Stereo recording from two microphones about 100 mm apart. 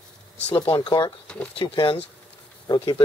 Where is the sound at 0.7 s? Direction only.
60° left (ahead or behind).